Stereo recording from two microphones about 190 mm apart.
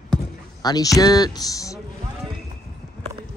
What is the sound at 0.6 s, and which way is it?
Speech, 20° left (ahead or behind).